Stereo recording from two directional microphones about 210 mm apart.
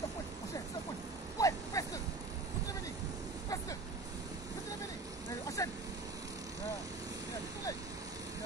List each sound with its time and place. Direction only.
1.4 s vehicle: 15° left (ahead or behind)
5.6 s vehicle: 15° left (ahead or behind)